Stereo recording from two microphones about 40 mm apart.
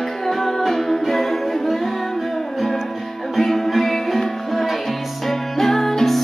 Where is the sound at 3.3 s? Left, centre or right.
Centre.